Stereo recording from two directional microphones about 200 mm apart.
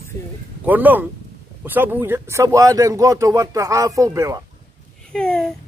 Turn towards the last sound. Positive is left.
turn(degrees=5)  # may be behind; listen again after turning